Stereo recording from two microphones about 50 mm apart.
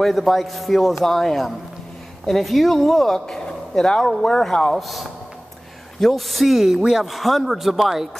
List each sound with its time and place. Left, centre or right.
0.0 s speech: centre